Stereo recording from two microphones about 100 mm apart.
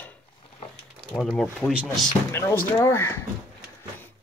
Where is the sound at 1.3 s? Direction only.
5° left (ahead or behind).